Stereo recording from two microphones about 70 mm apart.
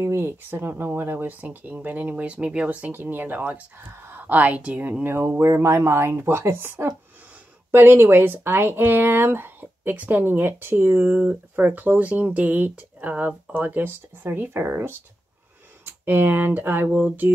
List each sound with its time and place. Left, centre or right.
0.0 s speech: right
5.1 s speech: right